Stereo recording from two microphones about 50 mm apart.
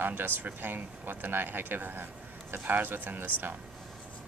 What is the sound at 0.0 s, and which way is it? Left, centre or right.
Speech, right.